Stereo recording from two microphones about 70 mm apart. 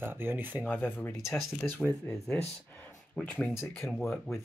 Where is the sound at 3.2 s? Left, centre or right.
Left.